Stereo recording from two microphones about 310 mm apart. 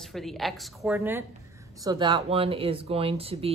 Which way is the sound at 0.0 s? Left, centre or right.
Centre.